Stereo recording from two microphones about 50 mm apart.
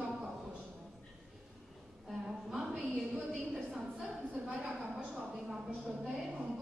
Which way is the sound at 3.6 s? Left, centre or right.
Centre.